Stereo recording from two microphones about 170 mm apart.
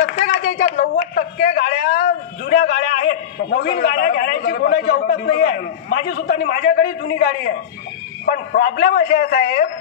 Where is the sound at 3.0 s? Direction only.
60° left (ahead or behind).